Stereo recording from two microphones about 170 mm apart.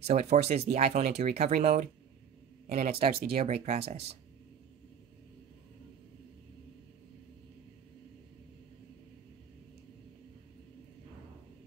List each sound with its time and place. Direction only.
0.0 s speech: 40° right (ahead or behind)